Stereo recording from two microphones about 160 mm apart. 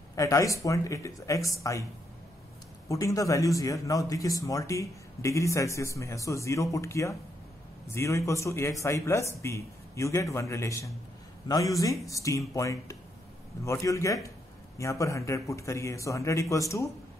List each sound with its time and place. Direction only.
0.1 s speech: 20° left (ahead or behind)
2.9 s speech: 20° left (ahead or behind)